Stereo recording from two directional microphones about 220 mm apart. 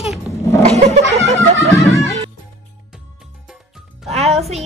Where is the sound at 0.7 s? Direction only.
30° right (ahead or behind).